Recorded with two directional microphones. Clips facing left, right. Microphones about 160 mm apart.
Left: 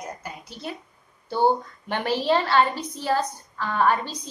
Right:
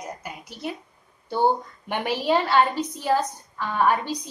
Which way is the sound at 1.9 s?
15° right (ahead or behind).